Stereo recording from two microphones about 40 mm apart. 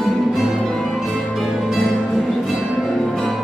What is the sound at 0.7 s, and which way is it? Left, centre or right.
Music, centre.